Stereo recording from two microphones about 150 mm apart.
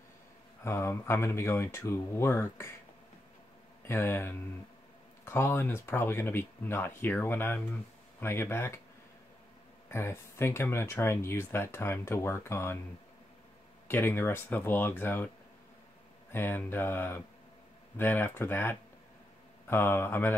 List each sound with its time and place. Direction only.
0.7 s speech: 15° left (ahead or behind)
3.8 s speech: 15° left (ahead or behind)
9.8 s speech: 15° left (ahead or behind)
13.8 s speech: 15° left (ahead or behind)